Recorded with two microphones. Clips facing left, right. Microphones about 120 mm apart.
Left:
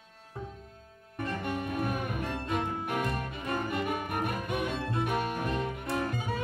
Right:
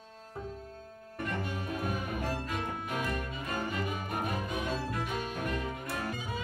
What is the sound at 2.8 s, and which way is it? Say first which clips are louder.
Music: left 3 dB; 60° left (ahead or behind).